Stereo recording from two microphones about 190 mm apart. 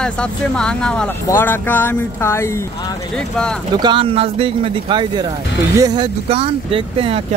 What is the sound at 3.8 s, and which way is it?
Speech, 25° right (ahead or behind).